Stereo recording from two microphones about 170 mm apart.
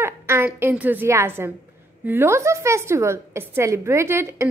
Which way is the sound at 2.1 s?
15° right (ahead or behind).